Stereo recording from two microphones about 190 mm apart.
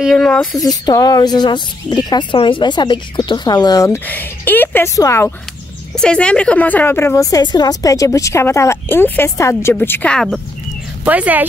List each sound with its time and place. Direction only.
0.0 s speech: centre (ahead or behind)
0.8 s speech: 20° left (ahead or behind)
5.9 s a woman's voice: 5° left (ahead or behind)